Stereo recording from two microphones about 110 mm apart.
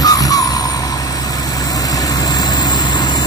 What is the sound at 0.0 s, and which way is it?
Vehicle, 35° left (ahead or behind).